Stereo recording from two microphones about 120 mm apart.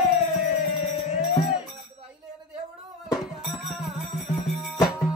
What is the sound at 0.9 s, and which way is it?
Music, 45° left (ahead or behind).